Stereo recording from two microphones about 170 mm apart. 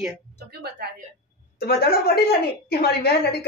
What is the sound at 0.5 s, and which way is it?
Speech, 70° right (ahead or behind).